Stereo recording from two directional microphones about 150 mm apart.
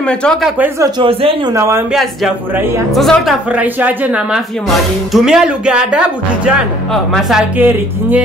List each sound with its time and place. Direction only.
0.0 s speech: 5° left (ahead or behind)
0.9 s speech: 35° right (ahead or behind)
1.5 s speech: 20° right (ahead or behind)
1.9 s a woman's voice: centre (ahead or behind)
3.5 s speech: 10° right (ahead or behind)